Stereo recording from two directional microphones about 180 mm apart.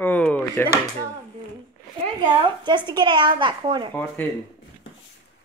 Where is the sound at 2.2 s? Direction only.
25° right (ahead or behind).